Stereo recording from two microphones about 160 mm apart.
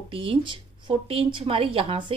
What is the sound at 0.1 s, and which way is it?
A woman's voice, 35° right (ahead or behind).